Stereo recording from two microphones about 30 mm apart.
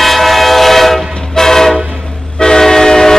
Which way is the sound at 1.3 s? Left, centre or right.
Centre.